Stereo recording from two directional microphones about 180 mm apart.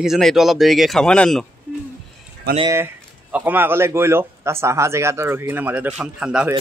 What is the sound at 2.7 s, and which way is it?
Speech, 10° right (ahead or behind).